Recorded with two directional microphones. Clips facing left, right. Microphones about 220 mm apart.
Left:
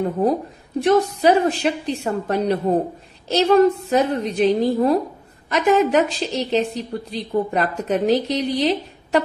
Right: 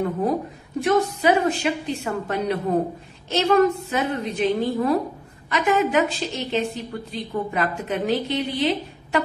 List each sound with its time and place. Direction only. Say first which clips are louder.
0.8 s a woman's voice: left 3 dB; 35° left (ahead or behind)